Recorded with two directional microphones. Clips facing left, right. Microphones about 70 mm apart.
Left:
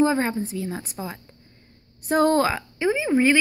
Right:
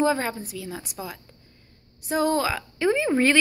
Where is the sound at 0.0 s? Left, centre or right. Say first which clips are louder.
Left 3 dB; left.